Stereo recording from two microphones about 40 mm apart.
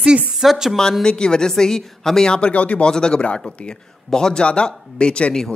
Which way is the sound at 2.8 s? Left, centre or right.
Left.